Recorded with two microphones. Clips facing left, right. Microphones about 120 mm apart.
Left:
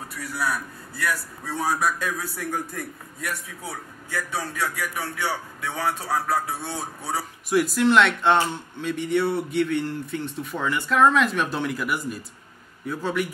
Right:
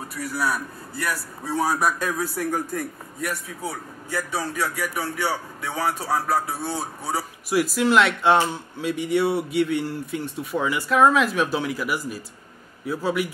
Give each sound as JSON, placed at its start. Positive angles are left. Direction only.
{"t": 0.4, "sound": "a man's voice", "side_deg": -35}
{"t": 7.2, "sound": "speech", "side_deg": -5}